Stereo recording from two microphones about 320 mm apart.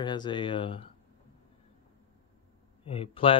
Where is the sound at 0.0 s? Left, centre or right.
Centre.